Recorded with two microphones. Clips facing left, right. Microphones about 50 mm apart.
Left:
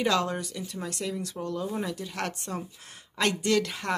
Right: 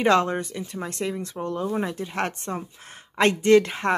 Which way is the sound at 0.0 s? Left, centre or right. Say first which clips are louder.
Right 6 dB; right.